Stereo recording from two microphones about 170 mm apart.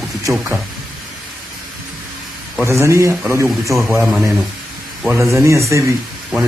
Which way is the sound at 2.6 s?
15° right (ahead or behind).